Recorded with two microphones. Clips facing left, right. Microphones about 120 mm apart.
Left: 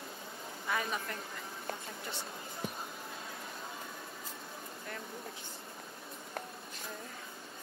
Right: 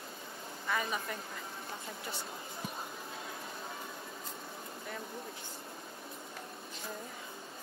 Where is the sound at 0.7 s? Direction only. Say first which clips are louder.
Right 1 dB; centre (ahead or behind).